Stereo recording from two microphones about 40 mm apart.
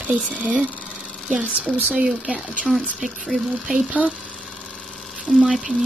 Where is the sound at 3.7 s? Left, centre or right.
Centre.